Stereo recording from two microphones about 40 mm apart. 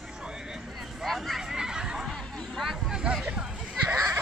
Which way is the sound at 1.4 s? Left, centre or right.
Centre.